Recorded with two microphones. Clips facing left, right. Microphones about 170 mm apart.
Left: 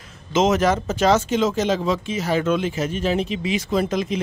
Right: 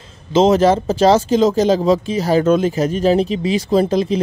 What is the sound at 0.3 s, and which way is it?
Speech, 30° right (ahead or behind).